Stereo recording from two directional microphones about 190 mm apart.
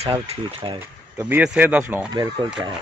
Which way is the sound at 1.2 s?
5° right (ahead or behind).